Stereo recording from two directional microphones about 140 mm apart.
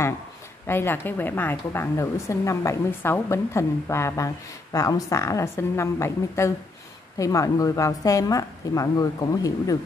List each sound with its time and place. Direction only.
0.7 s a woman's voice: 15° left (ahead or behind)